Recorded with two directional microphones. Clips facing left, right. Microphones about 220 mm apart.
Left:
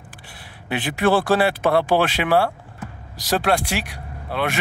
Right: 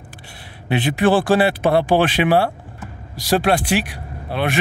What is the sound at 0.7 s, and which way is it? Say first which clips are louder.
Speech: right 3 dB; 20° right (ahead or behind).